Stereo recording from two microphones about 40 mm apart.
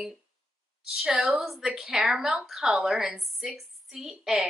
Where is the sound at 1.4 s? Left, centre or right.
Centre.